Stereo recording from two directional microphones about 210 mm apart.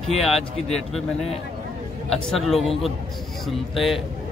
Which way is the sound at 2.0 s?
Centre (ahead or behind).